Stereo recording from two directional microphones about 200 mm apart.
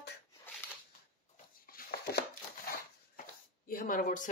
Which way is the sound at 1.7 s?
50° left (ahead or behind).